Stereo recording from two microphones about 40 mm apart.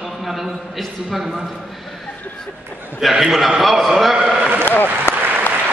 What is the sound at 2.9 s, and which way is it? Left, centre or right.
A man's voice, centre.